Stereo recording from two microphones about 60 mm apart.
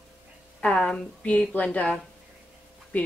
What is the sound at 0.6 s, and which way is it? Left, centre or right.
Speech, centre.